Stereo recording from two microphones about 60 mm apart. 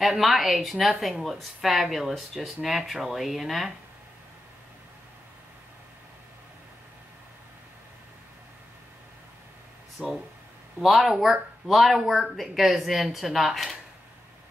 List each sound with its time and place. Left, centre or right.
0.0 s a woman's voice: centre
10.0 s speech: centre
10.8 s a woman's voice: centre